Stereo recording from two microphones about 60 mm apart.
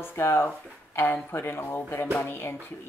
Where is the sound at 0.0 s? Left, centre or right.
Left.